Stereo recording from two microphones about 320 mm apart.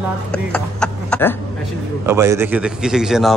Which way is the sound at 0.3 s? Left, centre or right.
Centre.